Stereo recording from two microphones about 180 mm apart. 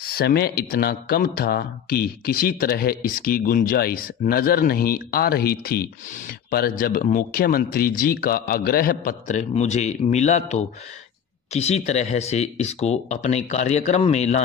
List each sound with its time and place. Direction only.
0.0 s speech: 60° left (ahead or behind); by 14.4 s 40° left (ahead or behind)